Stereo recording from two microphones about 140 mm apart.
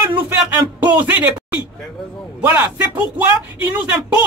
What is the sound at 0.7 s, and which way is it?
Speech, 10° right (ahead or behind).